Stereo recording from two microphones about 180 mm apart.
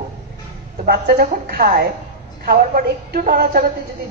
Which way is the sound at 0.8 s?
55° right (ahead or behind).